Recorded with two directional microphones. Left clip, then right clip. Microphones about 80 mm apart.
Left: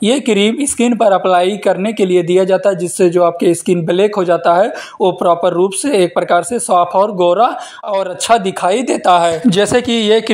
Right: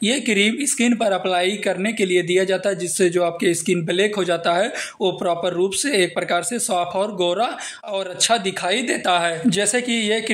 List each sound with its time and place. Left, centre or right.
0.0 s speech: left
9.5 s speech: left